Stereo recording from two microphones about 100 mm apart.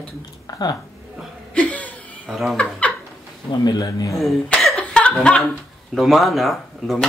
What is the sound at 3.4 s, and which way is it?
Speech, 40° left (ahead or behind).